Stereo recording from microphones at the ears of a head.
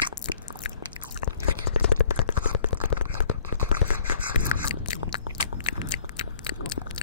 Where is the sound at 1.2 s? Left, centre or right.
Left.